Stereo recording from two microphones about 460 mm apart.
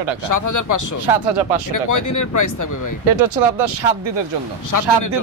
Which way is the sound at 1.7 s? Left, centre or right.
Left.